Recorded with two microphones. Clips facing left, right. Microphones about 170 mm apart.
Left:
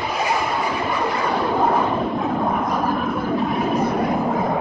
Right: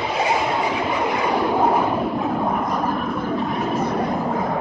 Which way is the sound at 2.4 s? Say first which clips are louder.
Left 1 dB; centre (ahead or behind).